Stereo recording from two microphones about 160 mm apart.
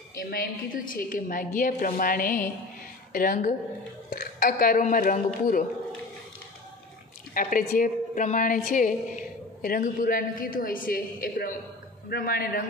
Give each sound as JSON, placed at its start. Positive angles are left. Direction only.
{"t": 0.2, "sound": "a woman's voice", "side_deg": 65}
{"t": 4.1, "sound": "a sound", "side_deg": 60}
{"t": 4.8, "sound": "a woman's voice", "side_deg": 55}
{"t": 7.3, "sound": "a woman's voice", "side_deg": 60}